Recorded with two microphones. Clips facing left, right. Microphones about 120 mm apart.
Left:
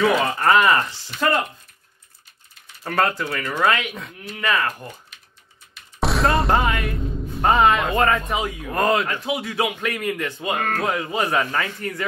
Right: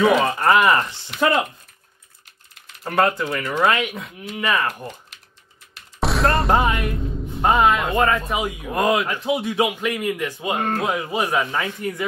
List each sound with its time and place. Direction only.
0.0 s speech: 10° right (ahead or behind)
2.8 s speech: 15° right (ahead or behind)
5.9 s a sound: centre (ahead or behind)
6.5 s music: 25° right (ahead or behind)
7.0 s music: centre (ahead or behind)
7.4 s speech: centre (ahead or behind)
8.4 s speech: 15° right (ahead or behind)